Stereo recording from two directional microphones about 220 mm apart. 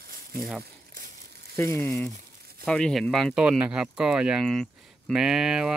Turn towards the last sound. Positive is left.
turn(degrees=-5)  # may be behind; listen again after turning